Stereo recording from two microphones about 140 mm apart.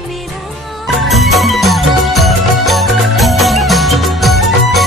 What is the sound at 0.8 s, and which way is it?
Music, centre (ahead or behind).